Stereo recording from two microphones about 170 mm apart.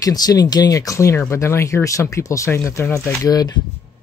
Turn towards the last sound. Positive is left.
turn(degrees=20)  # may be behind; listen again after turning